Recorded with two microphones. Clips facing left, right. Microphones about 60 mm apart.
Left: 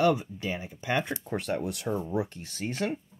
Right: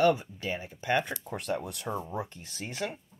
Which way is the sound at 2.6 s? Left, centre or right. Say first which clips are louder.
Left 4 dB; centre.